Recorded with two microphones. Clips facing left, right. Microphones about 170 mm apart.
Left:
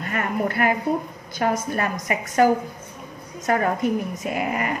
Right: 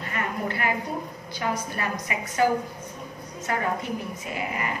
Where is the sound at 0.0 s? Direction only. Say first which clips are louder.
Left 5 dB; 50° left (ahead or behind).